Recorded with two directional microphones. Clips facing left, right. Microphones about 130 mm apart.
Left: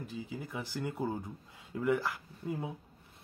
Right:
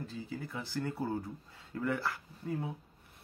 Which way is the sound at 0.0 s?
15° left (ahead or behind).